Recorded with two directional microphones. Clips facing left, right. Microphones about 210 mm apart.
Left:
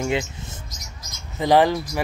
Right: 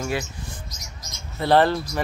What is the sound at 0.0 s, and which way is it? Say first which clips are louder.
Speech: left 3 dB; 20° left (ahead or behind).